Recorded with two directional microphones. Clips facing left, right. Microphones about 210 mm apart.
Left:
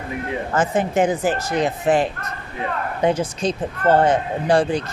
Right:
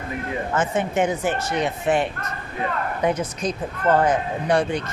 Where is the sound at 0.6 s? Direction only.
35° left (ahead or behind).